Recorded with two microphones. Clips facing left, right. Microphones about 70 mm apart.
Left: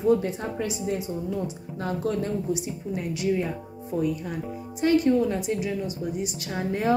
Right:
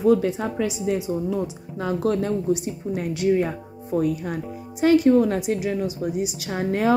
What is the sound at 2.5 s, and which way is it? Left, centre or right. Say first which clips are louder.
Speech: right 4 dB; right.